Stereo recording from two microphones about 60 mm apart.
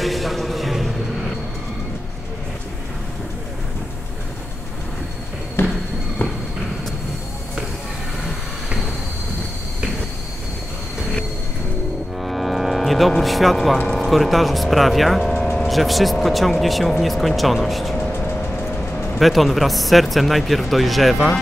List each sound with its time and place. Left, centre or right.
0.0 s music: centre
5.6 s fireworks: left
12.2 s speech: centre
19.1 s speech: centre